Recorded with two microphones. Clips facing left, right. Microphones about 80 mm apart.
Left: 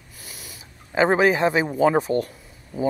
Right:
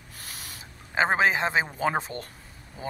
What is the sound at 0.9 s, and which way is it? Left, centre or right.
Speech, right.